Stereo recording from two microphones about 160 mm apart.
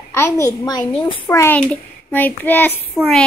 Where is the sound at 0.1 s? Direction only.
20° left (ahead or behind); by 1.3 s 35° left (ahead or behind).